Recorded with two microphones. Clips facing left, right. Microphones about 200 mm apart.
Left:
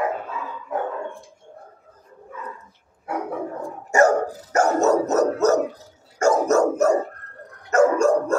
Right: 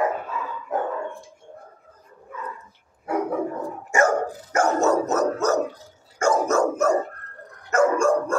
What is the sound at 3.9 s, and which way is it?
Dog, 40° left (ahead or behind).